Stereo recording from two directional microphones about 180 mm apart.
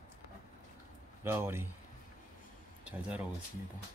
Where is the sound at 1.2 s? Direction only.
15° right (ahead or behind).